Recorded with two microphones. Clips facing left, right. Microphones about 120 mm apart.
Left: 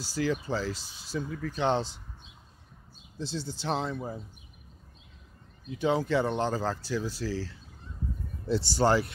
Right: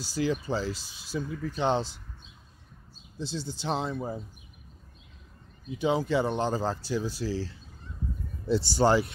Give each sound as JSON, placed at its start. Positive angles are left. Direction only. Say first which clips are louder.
{"t": 0.1, "sound": "speech", "louder": "right 1 dB", "side_deg": -20}
{"t": 1.6, "sound": "speech", "louder": "even", "side_deg": -5}
{"t": 3.2, "sound": "speech", "louder": "even", "side_deg": 0}
{"t": 5.8, "sound": "speech", "louder": "even", "side_deg": -10}